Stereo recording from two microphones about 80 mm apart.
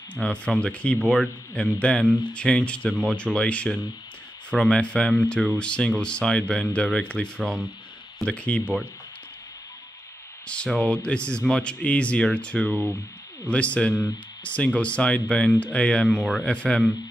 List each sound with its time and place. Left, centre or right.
0.1 s speech: centre
10.4 s speech: centre